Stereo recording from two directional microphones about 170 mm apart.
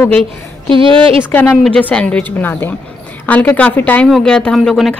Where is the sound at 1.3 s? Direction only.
10° left (ahead or behind).